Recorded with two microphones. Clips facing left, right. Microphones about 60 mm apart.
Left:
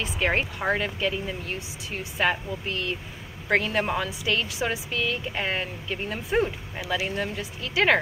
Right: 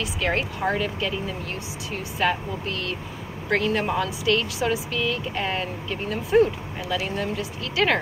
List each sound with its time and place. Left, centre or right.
0.2 s speech: left
2.2 s speech: centre
3.4 s speech: centre